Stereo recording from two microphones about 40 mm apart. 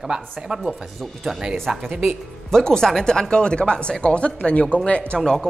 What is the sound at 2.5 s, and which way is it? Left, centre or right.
Speech, centre.